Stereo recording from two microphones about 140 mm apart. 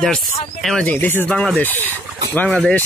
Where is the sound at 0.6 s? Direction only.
5° left (ahead or behind).